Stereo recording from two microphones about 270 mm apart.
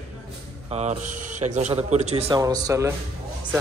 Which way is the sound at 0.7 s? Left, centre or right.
Right.